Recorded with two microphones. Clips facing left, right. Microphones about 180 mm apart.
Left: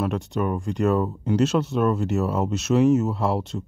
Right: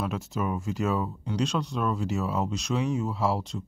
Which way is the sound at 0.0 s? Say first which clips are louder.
Left 5 dB; centre (ahead or behind).